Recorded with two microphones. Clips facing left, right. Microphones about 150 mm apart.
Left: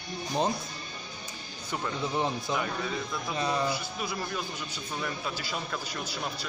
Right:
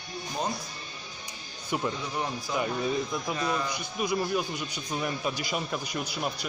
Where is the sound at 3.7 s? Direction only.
15° right (ahead or behind).